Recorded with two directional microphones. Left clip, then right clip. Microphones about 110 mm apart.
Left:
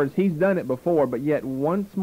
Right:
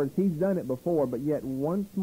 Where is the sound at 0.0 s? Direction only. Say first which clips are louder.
Left 6 dB; 15° right (ahead or behind).